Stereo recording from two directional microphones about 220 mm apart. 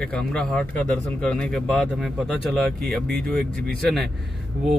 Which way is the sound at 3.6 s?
Centre (ahead or behind).